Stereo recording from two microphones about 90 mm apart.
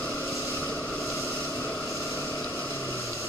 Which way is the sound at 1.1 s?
25° left (ahead or behind).